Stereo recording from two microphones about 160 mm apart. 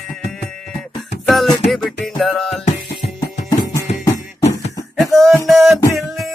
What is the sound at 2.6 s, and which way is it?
Music, 45° left (ahead or behind).